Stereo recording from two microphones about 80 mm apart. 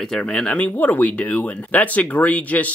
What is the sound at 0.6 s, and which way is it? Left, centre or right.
Speech, left.